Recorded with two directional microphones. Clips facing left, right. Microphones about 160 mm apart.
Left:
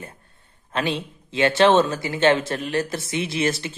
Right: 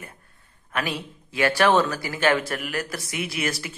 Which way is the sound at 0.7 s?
25° left (ahead or behind).